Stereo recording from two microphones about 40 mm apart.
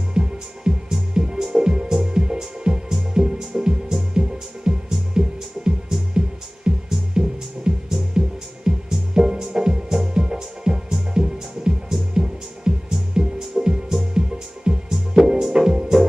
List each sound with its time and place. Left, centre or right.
0.1 s music: centre